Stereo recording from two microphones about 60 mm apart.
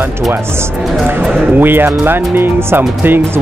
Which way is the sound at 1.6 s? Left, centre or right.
Right.